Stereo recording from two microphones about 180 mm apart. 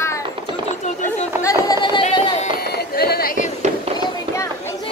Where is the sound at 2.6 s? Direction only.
60° left (ahead or behind).